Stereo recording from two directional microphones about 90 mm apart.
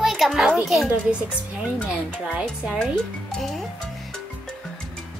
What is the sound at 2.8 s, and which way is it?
Speech, 5° left (ahead or behind).